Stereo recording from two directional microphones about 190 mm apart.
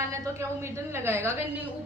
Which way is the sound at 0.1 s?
15° right (ahead or behind).